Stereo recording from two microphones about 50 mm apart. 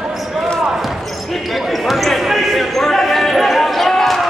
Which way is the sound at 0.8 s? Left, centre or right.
Centre.